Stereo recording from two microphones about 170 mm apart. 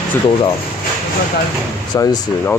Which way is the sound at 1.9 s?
20° left (ahead or behind).